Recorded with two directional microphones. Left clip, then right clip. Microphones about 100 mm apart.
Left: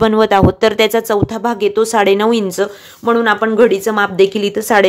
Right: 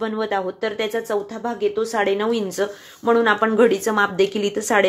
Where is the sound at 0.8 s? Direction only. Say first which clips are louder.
Left 10 dB; 90° left; by 2.7 s 55° left (ahead or behind).